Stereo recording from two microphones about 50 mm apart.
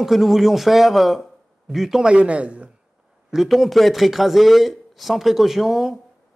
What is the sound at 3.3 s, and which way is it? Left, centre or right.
Speech, centre.